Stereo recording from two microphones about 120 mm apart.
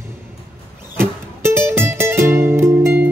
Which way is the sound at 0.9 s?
20° right (ahead or behind).